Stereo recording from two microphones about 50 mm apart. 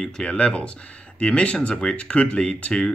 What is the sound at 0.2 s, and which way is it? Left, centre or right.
Speech, left.